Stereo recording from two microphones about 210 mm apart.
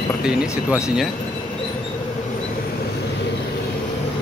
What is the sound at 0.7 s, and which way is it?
Speech, 5° right (ahead or behind).